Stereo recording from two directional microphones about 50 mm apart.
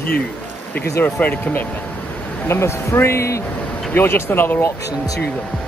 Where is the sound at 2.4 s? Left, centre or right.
Left.